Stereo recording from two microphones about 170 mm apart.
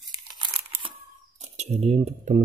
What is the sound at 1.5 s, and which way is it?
Speech, 40° right (ahead or behind).